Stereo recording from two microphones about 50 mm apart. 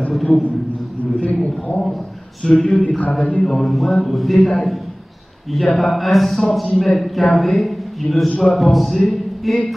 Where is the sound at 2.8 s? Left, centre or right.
Left.